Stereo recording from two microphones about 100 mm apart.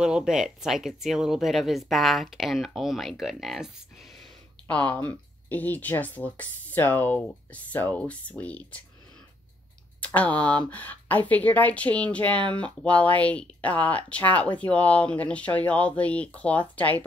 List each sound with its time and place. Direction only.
0.0 s speech: 5° right (ahead or behind)
4.6 s speech: 15° left (ahead or behind)
9.9 s speech: 15° left (ahead or behind)